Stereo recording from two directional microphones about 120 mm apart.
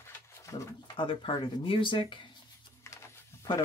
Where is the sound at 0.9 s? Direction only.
45° left (ahead or behind).